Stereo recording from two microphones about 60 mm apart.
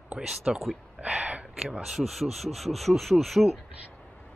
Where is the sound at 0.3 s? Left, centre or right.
Centre.